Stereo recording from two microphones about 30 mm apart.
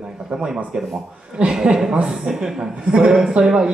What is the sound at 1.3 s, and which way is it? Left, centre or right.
Speech, right.